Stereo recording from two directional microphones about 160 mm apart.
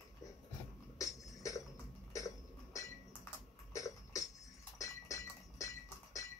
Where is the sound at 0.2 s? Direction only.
20° left (ahead or behind).